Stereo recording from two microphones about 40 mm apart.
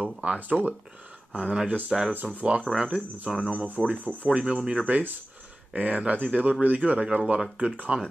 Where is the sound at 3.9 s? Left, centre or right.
Right.